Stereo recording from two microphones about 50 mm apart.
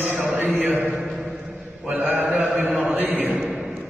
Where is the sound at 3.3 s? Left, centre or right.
Centre.